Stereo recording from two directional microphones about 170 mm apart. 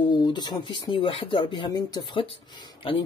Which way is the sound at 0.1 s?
25° left (ahead or behind).